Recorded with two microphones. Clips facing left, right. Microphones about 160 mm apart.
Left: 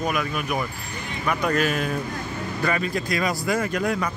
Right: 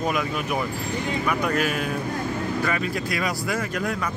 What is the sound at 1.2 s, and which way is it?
Speech, 5° right (ahead or behind).